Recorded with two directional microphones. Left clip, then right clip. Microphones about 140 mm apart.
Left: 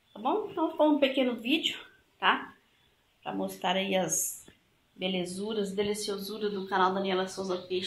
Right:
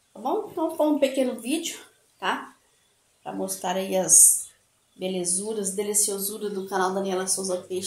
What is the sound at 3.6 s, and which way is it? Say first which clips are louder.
Speech: right 3 dB; 15° right (ahead or behind).